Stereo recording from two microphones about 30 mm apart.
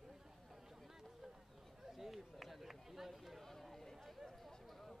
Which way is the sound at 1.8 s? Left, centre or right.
Centre.